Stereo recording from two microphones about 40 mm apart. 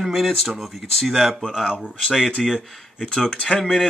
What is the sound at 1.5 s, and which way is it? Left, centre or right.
Speech, centre.